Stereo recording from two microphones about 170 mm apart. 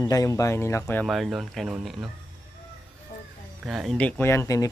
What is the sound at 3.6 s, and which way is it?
Speech, 5° right (ahead or behind).